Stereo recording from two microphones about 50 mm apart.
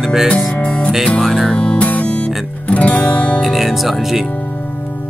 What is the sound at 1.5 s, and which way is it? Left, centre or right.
Music, centre.